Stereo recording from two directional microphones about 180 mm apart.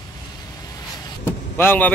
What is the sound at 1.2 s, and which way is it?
Vehicle, 10° left (ahead or behind).